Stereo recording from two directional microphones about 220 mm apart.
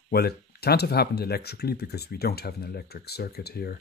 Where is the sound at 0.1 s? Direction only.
45° left (ahead or behind).